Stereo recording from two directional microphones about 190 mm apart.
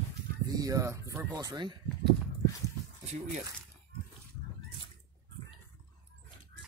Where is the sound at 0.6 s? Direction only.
15° right (ahead or behind).